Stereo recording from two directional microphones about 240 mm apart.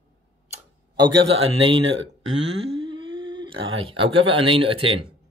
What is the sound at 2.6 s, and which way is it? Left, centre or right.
Speech, right.